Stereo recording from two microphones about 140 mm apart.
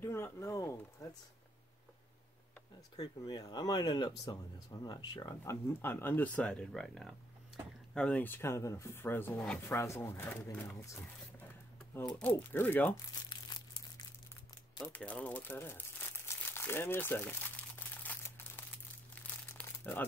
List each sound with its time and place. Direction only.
0.0 s speech: 20° left (ahead or behind)
3.0 s speech: 25° left (ahead or behind)
12.1 s speech: 10° left (ahead or behind)
13.3 s crumpling: 30° left (ahead or behind)
14.9 s speech: 10° left (ahead or behind)
16.3 s crumpling: 15° left (ahead or behind)